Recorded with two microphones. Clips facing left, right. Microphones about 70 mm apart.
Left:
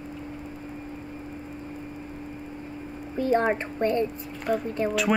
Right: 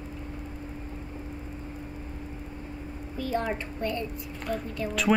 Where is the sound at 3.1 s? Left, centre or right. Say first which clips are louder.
Left 7 dB; left.